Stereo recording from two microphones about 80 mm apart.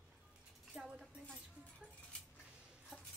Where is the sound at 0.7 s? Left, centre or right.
Centre.